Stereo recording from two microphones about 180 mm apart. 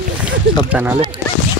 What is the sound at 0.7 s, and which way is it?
Speech, 10° right (ahead or behind).